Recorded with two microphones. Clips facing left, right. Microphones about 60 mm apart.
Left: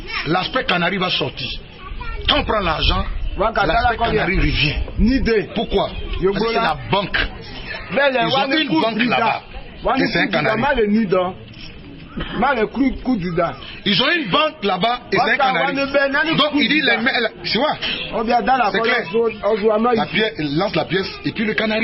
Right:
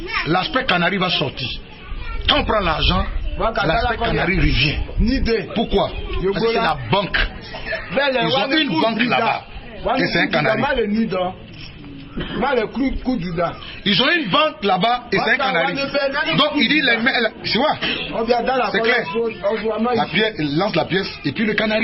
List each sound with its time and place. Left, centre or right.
0.1 s a man's voice: centre
12.2 s a man's voice: centre
13.1 s a man's voice: left
13.8 s a man's voice: centre